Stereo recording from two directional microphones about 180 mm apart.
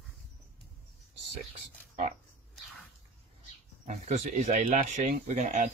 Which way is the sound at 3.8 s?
45° right (ahead or behind).